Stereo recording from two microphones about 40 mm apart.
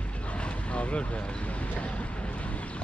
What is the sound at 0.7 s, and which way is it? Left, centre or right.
Vehicle, left.